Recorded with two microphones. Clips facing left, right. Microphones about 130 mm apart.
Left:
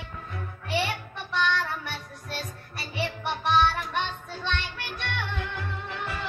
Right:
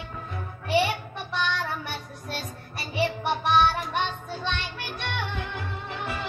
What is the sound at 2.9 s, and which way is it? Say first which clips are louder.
Music: right 5 dB; 10° right (ahead or behind).